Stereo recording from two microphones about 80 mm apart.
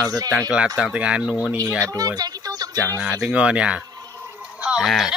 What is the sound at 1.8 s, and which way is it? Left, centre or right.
Speech, right.